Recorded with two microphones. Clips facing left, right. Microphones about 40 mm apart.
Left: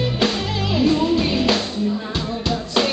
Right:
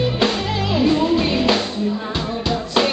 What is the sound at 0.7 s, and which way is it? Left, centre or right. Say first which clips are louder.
Music: right 1 dB; centre.